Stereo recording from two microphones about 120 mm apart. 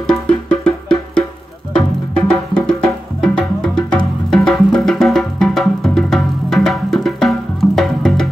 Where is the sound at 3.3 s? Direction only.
5° left (ahead or behind).